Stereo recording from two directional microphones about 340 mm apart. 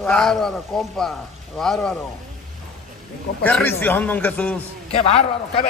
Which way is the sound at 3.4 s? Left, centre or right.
Centre.